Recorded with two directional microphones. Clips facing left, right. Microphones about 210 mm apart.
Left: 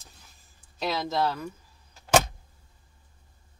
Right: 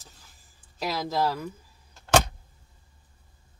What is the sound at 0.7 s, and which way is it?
Speech, 5° right (ahead or behind).